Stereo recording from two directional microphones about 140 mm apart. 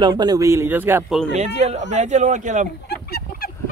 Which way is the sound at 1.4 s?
55° right (ahead or behind).